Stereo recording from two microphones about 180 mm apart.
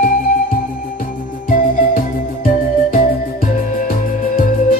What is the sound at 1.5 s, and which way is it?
Music, 50° left (ahead or behind).